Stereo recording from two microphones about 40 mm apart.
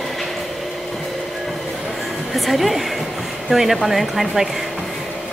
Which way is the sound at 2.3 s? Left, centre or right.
Centre.